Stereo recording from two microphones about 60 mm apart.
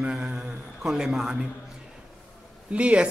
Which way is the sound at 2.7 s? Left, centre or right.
Centre.